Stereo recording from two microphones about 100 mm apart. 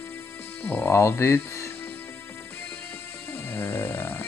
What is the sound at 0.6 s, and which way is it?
Speech, 20° left (ahead or behind).